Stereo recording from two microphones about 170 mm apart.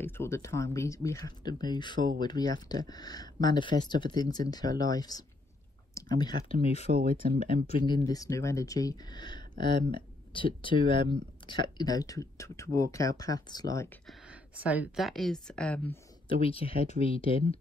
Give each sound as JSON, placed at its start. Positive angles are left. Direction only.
{"t": 0.0, "sound": "speech", "side_deg": 15}
{"t": 6.9, "sound": "speech", "side_deg": -60}
{"t": 7.8, "sound": "speech", "side_deg": 25}
{"t": 14.0, "sound": "speech", "side_deg": -5}
{"t": 15.9, "sound": "speech", "side_deg": 35}